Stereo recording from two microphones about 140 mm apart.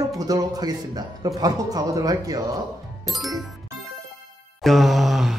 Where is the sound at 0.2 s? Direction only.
25° right (ahead or behind).